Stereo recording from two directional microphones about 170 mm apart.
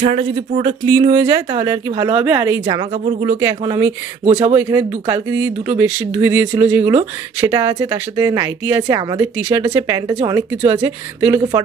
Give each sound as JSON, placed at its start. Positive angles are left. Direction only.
{"t": 0.6, "sound": "a woman's voice", "side_deg": -25}
{"t": 2.9, "sound": "speech", "side_deg": -40}
{"t": 3.3, "sound": "a woman's voice", "side_deg": -20}
{"t": 4.2, "sound": "speech", "side_deg": -35}
{"t": 4.6, "sound": "a woman's voice", "side_deg": -15}